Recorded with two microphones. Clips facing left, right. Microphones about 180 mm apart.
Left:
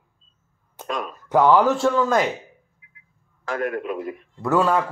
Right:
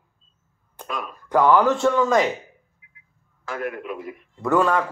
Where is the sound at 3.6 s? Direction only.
40° left (ahead or behind).